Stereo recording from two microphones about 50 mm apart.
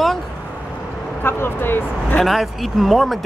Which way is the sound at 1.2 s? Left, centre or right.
Left.